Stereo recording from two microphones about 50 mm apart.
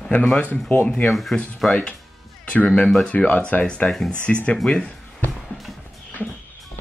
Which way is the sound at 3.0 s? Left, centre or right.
Left.